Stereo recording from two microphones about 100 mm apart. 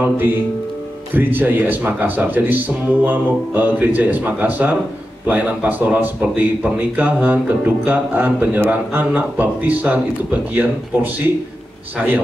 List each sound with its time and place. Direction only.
0.0 s speech: 20° right (ahead or behind)